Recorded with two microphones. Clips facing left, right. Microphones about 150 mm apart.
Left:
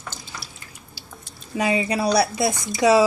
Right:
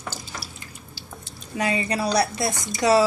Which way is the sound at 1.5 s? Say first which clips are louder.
Left 3 dB; 15° left (ahead or behind).